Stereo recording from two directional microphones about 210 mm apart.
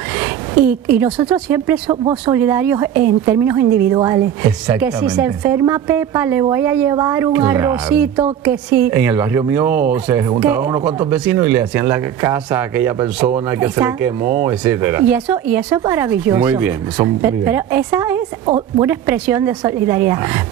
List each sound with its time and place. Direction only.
0.2 s speech: 10° right (ahead or behind)
4.7 s speech: 5° right (ahead or behind)